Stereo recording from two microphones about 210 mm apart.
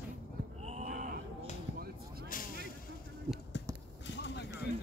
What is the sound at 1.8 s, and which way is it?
Vehicle, 45° right (ahead or behind).